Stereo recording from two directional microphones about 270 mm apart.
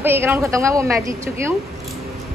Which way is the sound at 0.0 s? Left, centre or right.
Centre.